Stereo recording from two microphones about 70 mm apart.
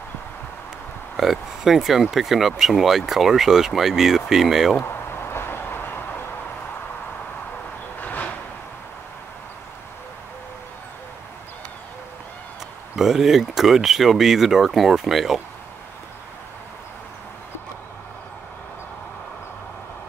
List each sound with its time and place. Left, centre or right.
1.1 s speech: centre
5.3 s vehicle: left
8.0 s a sound: left
12.9 s speech: centre